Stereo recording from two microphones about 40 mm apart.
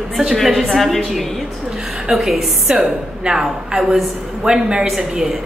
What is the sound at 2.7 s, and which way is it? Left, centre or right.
A woman's voice, centre.